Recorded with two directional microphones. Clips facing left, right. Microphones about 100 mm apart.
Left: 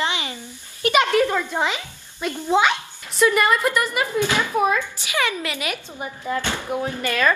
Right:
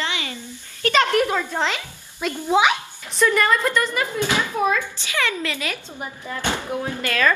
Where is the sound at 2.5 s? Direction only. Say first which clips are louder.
Right 1 dB; 10° right (ahead or behind).